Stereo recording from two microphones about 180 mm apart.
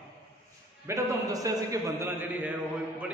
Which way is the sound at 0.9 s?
15° right (ahead or behind).